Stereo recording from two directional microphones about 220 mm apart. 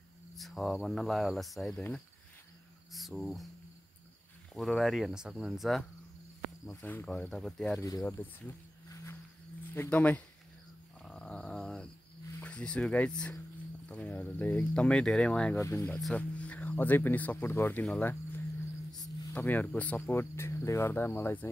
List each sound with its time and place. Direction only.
0.4 s speech: centre (ahead or behind)
4.6 s speech: centre (ahead or behind)
8.0 s cricket: 5° left (ahead or behind)
9.8 s cricket: 5° left (ahead or behind)
11.0 s dog: 5° left (ahead or behind)
12.4 s speech: 5° left (ahead or behind)
18.9 s music: 15° left (ahead or behind)
19.3 s cricket: 10° left (ahead or behind)